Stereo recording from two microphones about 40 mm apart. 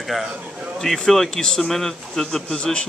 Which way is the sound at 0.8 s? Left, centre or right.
Centre.